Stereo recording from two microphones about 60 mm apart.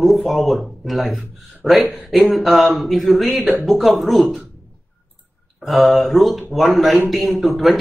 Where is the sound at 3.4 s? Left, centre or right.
Right.